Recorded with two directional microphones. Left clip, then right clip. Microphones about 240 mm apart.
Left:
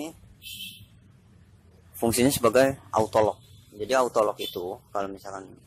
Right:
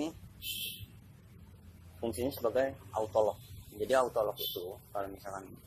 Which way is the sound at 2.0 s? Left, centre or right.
Left.